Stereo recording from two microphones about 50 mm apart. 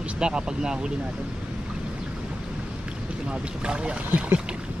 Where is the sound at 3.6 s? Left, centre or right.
Centre.